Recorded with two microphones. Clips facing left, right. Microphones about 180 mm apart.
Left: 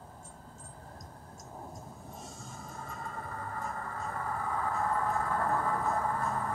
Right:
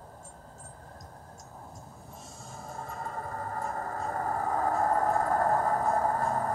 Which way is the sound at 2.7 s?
40° right (ahead or behind).